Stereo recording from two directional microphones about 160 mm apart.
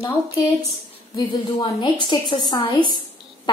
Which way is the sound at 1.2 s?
30° left (ahead or behind).